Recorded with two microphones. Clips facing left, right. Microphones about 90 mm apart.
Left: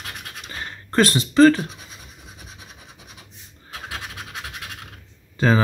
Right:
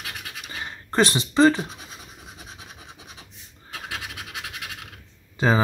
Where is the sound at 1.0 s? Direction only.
20° right (ahead or behind).